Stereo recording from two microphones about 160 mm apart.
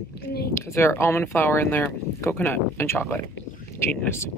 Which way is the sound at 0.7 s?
15° left (ahead or behind).